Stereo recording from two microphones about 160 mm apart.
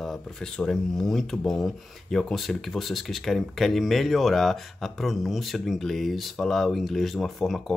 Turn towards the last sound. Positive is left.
turn(degrees=0)  # may be behind; listen again after turning